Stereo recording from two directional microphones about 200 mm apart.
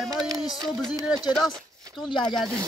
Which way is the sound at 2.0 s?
25° left (ahead or behind).